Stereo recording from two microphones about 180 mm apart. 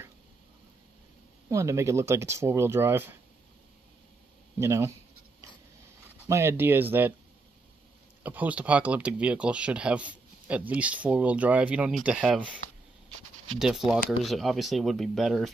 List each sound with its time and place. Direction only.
1.5 s speech: 15° right (ahead or behind)
4.6 s speech: 15° right (ahead or behind)
6.2 s speech: 15° right (ahead or behind)
8.2 s speech: 10° right (ahead or behind)
13.6 s speech: 5° right (ahead or behind)